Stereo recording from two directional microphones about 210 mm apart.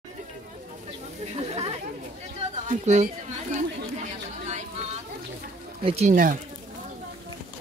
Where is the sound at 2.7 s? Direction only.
35° right (ahead or behind).